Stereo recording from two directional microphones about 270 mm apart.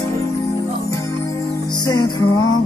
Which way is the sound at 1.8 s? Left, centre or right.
Centre.